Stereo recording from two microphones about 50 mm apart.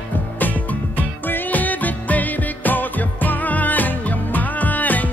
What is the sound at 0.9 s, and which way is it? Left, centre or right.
Music, left.